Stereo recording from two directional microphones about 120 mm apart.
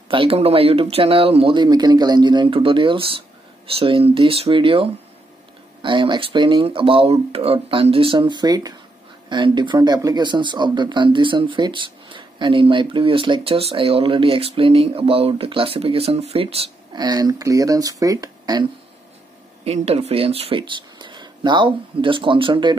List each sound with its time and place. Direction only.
0.1 s speech: 50° right (ahead or behind)
16.9 s speech: 35° right (ahead or behind)
19.6 s speech: 60° right (ahead or behind); by 22.8 s 40° right (ahead or behind)